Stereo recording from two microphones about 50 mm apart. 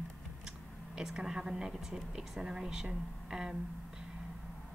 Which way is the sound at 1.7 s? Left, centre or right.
Centre.